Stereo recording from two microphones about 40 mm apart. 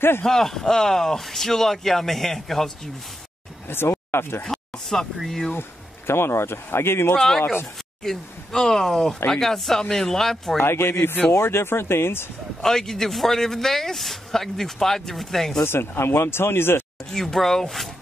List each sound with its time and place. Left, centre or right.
0.2 s a man's voice: centre
3.6 s speech: left
4.5 s a man's voice: centre
5.5 s speech: left
7.2 s a man's voice: centre
10.6 s speech: left
12.6 s a man's voice: centre
15.6 s speech: left
17.1 s a man's voice: centre